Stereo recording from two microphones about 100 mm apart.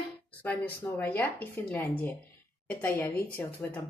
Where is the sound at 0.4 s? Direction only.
20° left (ahead or behind).